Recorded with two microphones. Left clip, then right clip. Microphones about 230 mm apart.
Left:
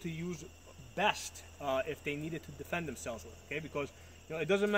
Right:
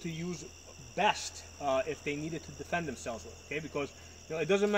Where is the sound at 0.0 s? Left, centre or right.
Centre.